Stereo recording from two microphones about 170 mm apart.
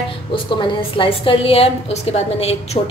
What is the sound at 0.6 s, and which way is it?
A woman's voice, 30° left (ahead or behind).